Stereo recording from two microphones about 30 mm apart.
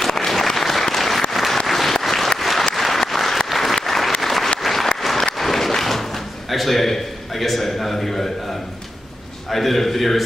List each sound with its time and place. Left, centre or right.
0.0 s applause: centre
5.1 s a sound: centre
9.5 s a man's voice: centre